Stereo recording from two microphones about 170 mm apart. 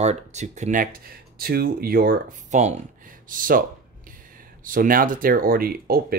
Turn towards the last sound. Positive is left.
turn(degrees=-60)  # may be behind; listen again after turning